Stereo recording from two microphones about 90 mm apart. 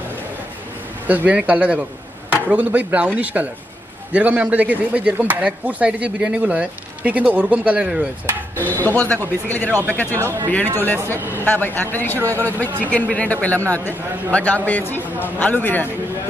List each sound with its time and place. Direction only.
1.0 s speech: 15° right (ahead or behind)
8.5 s speech: 20° left (ahead or behind)
10.1 s speech: 30° right (ahead or behind)
11.4 s speech: 20° left (ahead or behind)
12.2 s speech: 30° right (ahead or behind)
12.9 s speech: 15° left (ahead or behind)